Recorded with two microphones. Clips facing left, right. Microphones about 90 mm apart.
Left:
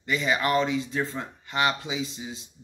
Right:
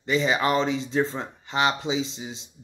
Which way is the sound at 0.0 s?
25° right (ahead or behind).